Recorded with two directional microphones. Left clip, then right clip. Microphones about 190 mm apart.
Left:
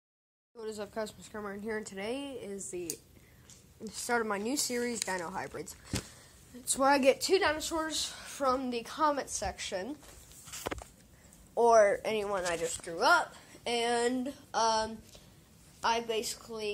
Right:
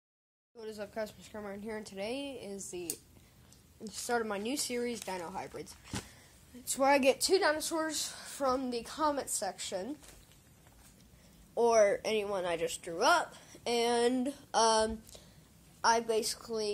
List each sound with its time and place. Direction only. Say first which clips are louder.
0.6 s speech: left 2 dB; 5° left (ahead or behind)
2.2 s a woman's voice: left 1 dB; 15° right (ahead or behind)
3.8 s speech: left 2 dB; centre (ahead or behind)
6.8 s a woman's voice: left 1 dB; 5° right (ahead or behind)
11.5 s a woman's voice: left 4 dB; 10° right (ahead or behind)
11.8 s a woman's voice: left 1 dB; 20° right (ahead or behind)
14.2 s speech: right 1 dB; 35° right (ahead or behind)
15.8 s a woman's voice: right 2 dB; 15° right (ahead or behind)